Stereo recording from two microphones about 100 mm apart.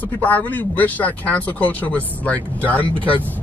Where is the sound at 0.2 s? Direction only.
15° left (ahead or behind).